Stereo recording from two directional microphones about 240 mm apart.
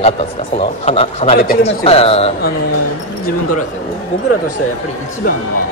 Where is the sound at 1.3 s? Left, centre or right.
Left.